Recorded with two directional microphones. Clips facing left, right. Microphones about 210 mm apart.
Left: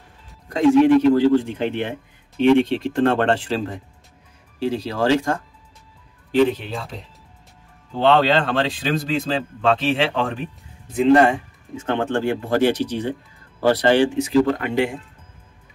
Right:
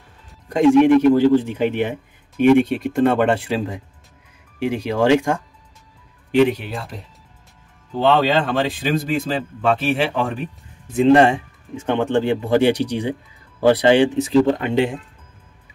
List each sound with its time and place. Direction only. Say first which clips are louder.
0.6 s speech: right 1 dB; 20° right (ahead or behind)
8.0 s speech: even; 10° right (ahead or behind)
11.1 s speech: right 1 dB; 25° right (ahead or behind)